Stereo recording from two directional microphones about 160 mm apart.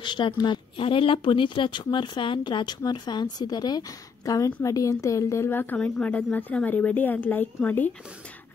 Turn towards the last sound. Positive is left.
turn(degrees=10)  # may be behind; listen again after turning